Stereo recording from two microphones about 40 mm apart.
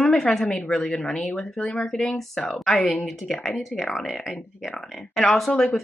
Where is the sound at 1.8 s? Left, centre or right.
Centre.